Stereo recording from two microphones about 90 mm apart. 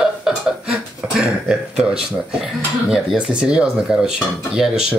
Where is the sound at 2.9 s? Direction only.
5° right (ahead or behind).